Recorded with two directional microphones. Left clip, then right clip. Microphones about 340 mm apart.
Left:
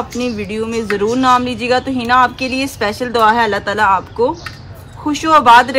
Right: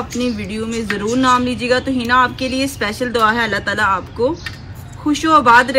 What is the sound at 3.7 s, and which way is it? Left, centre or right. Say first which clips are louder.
A man's voice: left 4 dB; centre.